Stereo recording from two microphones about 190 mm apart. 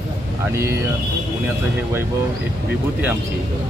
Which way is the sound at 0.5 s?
15° right (ahead or behind).